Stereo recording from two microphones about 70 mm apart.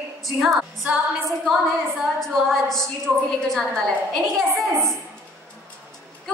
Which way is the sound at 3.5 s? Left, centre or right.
Centre.